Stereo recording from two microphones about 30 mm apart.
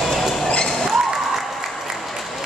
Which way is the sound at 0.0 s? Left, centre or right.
Centre.